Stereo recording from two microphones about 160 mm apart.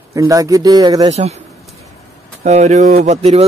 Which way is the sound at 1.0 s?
40° right (ahead or behind).